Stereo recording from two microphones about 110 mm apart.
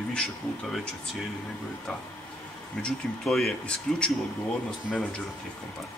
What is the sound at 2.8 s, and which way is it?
Speech, 5° left (ahead or behind).